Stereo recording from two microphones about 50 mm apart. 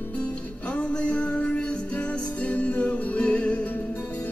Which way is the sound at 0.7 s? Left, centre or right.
Left.